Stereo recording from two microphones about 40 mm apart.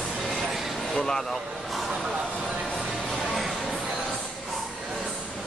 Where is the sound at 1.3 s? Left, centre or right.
Centre.